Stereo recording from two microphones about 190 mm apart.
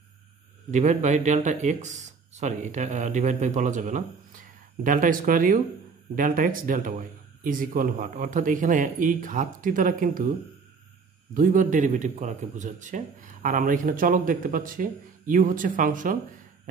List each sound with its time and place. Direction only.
0.7 s speech: 40° right (ahead or behind)
11.3 s speech: 45° right (ahead or behind)